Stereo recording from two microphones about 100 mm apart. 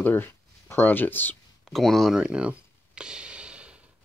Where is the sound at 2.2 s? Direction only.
10° right (ahead or behind).